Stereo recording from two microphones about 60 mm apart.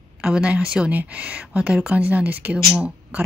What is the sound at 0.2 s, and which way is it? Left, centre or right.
Speech, centre.